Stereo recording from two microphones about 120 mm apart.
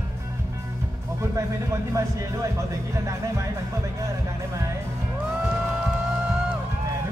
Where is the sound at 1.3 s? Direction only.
25° right (ahead or behind).